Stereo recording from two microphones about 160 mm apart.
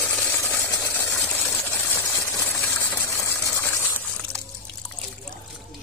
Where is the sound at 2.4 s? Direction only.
15° left (ahead or behind).